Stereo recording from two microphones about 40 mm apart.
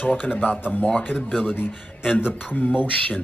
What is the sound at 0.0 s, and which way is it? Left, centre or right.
Speech, left.